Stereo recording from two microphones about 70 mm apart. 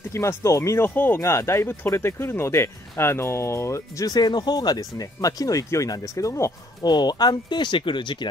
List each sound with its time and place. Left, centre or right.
0.1 s speech: left
4.1 s speech: left
6.8 s speech: left